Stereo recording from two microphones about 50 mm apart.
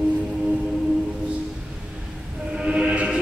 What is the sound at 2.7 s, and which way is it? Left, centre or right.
Music, right.